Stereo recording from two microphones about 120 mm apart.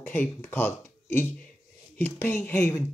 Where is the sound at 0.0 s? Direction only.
15° left (ahead or behind).